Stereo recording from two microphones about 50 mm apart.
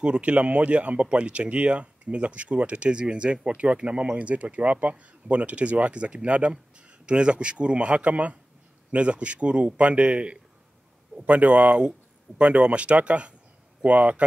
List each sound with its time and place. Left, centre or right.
0.0 s speech: right